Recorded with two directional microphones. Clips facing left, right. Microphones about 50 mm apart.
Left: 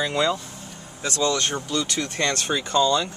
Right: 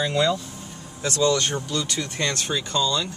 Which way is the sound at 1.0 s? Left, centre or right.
Centre.